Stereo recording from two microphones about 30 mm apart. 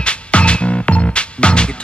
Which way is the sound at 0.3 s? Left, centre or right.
Left.